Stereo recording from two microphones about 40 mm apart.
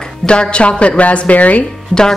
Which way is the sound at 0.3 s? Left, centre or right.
Left.